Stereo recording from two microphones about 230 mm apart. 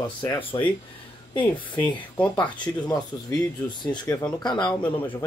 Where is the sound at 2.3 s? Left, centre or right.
Centre.